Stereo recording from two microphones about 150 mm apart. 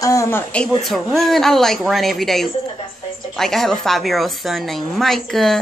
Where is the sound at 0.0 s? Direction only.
20° left (ahead or behind).